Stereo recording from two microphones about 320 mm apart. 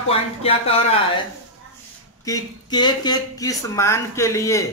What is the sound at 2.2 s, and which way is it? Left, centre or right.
Speech, centre.